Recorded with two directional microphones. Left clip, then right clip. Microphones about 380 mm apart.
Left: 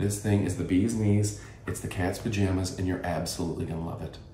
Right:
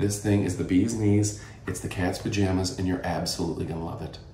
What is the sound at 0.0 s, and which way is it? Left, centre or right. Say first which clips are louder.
Speech: right 3 dB; centre.